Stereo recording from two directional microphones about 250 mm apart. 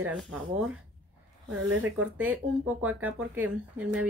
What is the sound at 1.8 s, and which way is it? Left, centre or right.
Speech, centre.